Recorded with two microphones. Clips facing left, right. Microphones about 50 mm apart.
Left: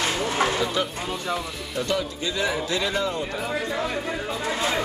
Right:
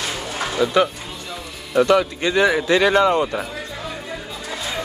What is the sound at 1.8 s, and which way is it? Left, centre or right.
Speech, right.